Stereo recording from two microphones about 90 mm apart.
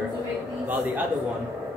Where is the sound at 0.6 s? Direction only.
20° right (ahead or behind).